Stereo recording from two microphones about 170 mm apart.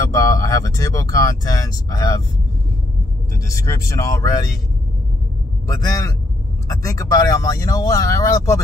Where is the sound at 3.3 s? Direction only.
20° left (ahead or behind).